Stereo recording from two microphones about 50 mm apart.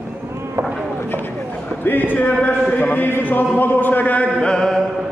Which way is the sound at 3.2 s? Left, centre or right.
Left.